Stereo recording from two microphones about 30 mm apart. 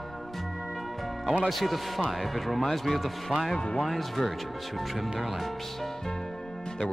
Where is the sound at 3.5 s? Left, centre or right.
Left.